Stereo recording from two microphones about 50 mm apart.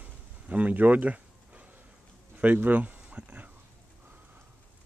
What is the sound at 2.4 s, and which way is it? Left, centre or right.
Speech, right.